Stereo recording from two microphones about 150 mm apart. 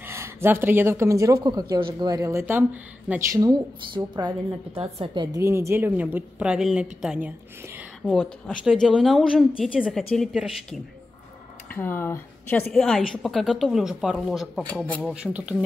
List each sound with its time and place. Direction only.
0.0 s a woman's voice: 15° right (ahead or behind)
8.0 s a woman's voice: 5° left (ahead or behind)
11.7 s speech: 15° left (ahead or behind)
12.7 s a woman's voice: 5° left (ahead or behind)